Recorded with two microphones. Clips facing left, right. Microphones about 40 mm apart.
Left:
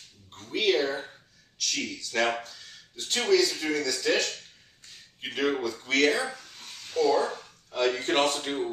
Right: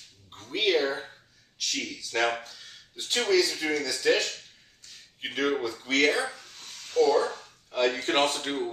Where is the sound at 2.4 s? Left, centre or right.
Centre.